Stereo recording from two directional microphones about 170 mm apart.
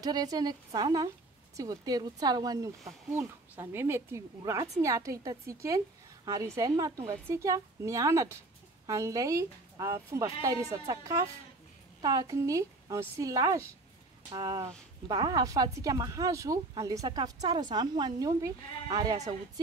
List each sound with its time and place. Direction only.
0.0 s a woman's voice: 20° right (ahead or behind)